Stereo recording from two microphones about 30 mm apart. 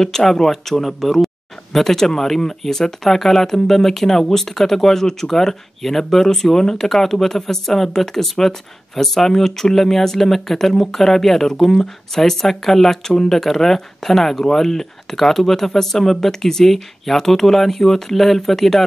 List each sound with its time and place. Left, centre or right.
0.0 s speech: centre